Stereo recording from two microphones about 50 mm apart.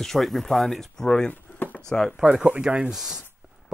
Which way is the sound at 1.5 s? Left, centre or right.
Left.